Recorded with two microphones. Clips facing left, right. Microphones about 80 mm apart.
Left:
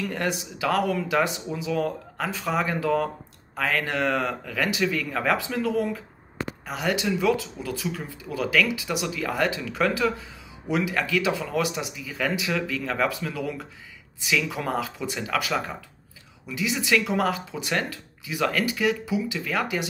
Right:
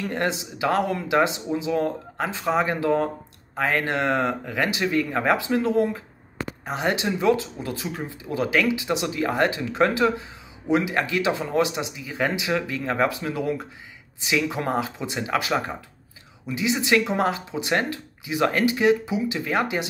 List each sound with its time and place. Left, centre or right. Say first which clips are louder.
0.0 s speech: right 2 dB; right